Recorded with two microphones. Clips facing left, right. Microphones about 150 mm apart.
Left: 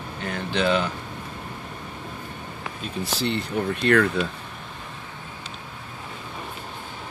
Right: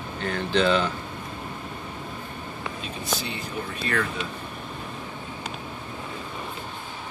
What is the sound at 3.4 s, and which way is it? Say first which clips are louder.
Speech: left 7 dB; 70° left (ahead or behind).